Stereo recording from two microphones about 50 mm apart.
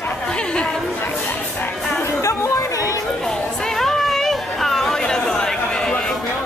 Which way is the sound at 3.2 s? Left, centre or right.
Centre.